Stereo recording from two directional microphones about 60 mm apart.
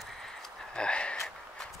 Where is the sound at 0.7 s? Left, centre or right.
Centre.